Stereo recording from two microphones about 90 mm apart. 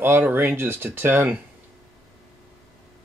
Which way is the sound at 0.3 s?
25° right (ahead or behind).